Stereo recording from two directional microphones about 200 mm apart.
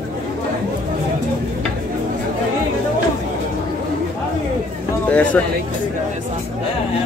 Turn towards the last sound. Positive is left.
turn(degrees=10)  # may be behind; listen again after turning